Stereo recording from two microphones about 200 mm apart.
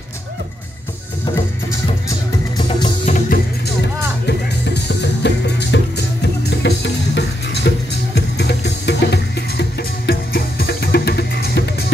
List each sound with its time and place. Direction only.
2.0 s music: 20° left (ahead or behind)
3.1 s music: 45° left (ahead or behind)
4.3 s music: 60° left (ahead or behind)